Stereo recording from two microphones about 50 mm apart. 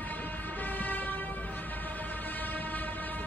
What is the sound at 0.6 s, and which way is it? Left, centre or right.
Vehicle, left.